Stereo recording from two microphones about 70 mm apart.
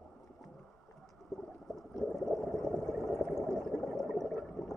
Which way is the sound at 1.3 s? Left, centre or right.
Centre.